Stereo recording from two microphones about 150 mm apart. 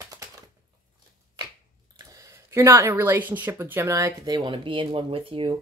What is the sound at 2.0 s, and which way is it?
Speech, 20° right (ahead or behind).